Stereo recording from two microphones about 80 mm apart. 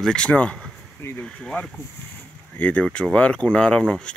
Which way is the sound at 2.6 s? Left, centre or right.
Centre.